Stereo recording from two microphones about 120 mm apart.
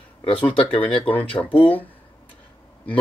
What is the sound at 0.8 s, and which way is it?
Speech, 10° left (ahead or behind).